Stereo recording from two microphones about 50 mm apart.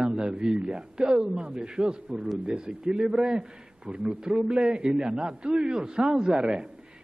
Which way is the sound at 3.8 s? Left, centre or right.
Right.